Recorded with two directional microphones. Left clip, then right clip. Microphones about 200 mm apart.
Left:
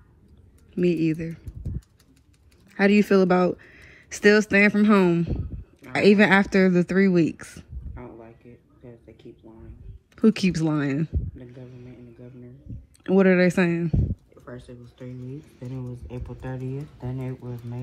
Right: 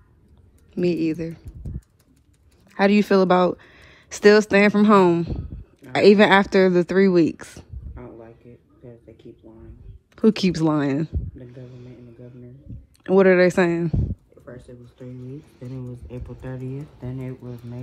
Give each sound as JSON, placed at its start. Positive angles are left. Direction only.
{"t": 0.8, "sound": "speech", "side_deg": -30}
{"t": 2.7, "sound": "speech", "side_deg": -30}
{"t": 7.9, "sound": "a sound", "side_deg": -10}
{"t": 10.1, "sound": "speech", "side_deg": -30}
{"t": 11.6, "sound": "a sound", "side_deg": -30}
{"t": 13.2, "sound": "speech", "side_deg": -35}
{"t": 14.7, "sound": "speech", "side_deg": -5}